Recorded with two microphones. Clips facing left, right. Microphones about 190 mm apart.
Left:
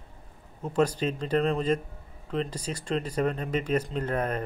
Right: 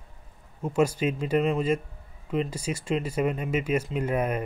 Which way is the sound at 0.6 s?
10° right (ahead or behind).